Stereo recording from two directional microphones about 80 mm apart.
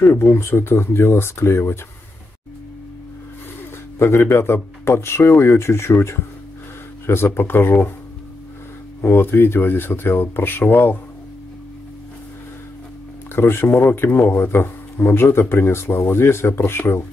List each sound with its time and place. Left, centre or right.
0.0 s speech: left
4.0 s speech: left
9.0 s speech: left
13.3 s speech: left